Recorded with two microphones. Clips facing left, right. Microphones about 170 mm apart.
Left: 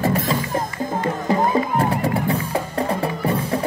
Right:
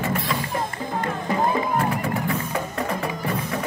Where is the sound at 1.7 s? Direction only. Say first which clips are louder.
Left 3 dB; 35° left (ahead or behind).